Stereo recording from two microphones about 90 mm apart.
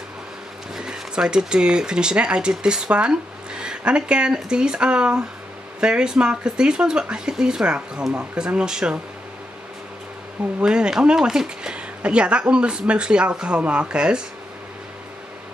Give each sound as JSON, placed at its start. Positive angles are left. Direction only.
{"t": 0.7, "sound": "speech", "side_deg": -5}
{"t": 10.6, "sound": "speech", "side_deg": -10}